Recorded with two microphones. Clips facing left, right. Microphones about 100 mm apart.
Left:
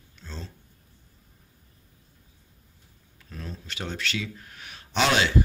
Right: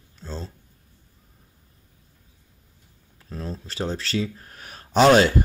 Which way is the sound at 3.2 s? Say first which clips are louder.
Right 6 dB; 35° right (ahead or behind).